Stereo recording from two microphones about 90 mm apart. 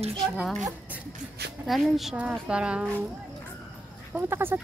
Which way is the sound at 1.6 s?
Centre (ahead or behind).